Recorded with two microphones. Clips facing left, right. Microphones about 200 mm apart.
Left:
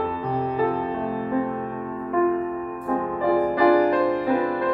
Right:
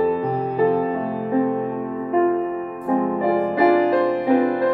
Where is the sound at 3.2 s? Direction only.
20° right (ahead or behind).